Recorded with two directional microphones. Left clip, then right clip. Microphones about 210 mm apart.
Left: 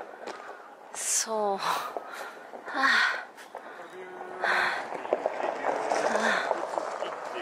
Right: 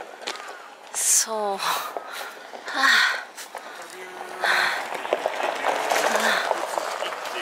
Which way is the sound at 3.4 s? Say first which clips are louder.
Right 5 dB; 15° left (ahead or behind).